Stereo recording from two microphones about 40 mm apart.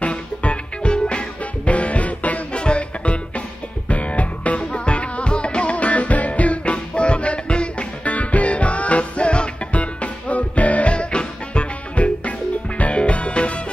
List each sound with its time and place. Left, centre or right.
0.0 s music: left
2.5 s music: left